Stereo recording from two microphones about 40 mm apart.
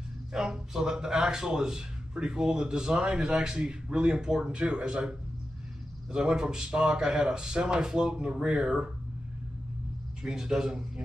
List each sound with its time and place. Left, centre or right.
0.3 s a man's voice: centre
6.1 s a man's voice: right
10.3 s a man's voice: centre